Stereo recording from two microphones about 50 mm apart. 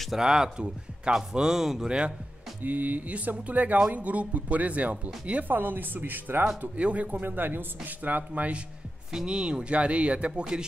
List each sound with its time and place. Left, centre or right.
0.2 s speech: centre
1.9 s speech: right
2.6 s speech: right
5.5 s speech: right
6.8 s speech: right
9.1 s speech: centre